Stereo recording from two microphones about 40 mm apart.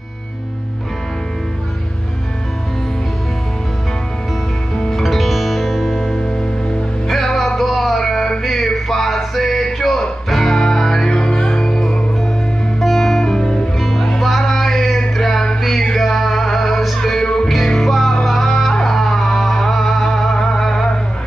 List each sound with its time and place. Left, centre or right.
4.7 s music: centre
5.0 s music: centre
12.8 s music: centre
13.7 s music: centre